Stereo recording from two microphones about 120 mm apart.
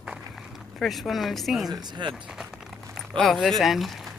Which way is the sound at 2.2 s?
5° right (ahead or behind).